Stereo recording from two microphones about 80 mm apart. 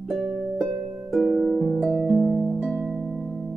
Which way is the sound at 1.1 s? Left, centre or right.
Centre.